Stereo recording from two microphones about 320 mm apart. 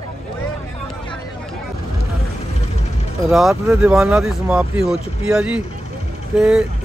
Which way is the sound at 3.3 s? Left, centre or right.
Centre.